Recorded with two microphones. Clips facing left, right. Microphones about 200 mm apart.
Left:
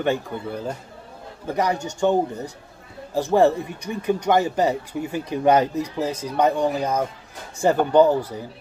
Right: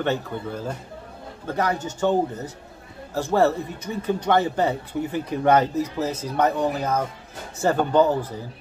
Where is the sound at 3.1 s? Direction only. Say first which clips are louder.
Left 3 dB; 15° left (ahead or behind).